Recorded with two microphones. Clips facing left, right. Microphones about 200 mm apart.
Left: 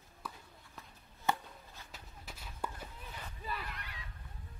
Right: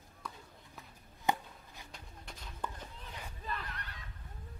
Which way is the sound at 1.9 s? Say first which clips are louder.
Even; 5° left (ahead or behind).